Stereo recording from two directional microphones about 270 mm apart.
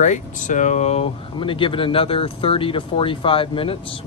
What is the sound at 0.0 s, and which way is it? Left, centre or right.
Speech, left.